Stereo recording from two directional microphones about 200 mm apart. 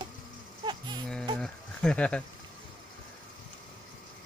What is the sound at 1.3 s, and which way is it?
Speech, 5° left (ahead or behind).